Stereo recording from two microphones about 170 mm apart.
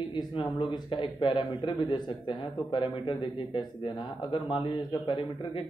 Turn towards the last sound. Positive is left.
turn(degrees=30)  # may be behind; listen again after turning